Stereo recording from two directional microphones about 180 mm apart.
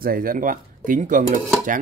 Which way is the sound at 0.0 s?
55° right (ahead or behind).